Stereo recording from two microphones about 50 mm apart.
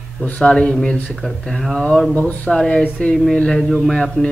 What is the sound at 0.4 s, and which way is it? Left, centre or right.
Speech, centre.